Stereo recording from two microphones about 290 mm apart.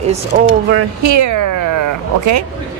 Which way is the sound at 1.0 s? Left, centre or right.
Right.